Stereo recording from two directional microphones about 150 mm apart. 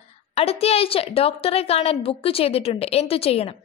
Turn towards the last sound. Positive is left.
turn(degrees=40)  # may be behind; listen again after turning